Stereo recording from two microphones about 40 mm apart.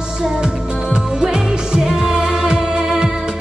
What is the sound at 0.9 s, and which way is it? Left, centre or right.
Music, centre.